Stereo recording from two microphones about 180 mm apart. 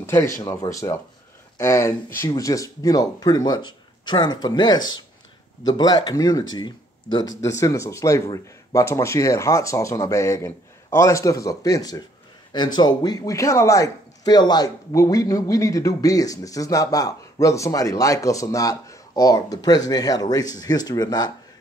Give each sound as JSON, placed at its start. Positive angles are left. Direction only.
{"t": 0.0, "sound": "speech", "side_deg": 15}